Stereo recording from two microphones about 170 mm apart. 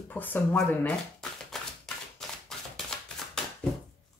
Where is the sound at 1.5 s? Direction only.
Centre (ahead or behind).